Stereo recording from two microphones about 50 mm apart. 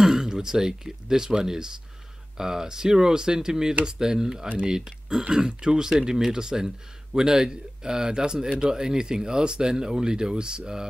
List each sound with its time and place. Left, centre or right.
0.0 s speech: centre